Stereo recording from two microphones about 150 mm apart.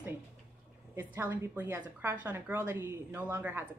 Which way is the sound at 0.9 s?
15° right (ahead or behind).